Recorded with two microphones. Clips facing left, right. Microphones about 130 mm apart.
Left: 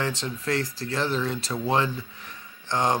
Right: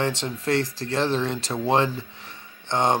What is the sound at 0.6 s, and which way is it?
Speech, 40° left (ahead or behind).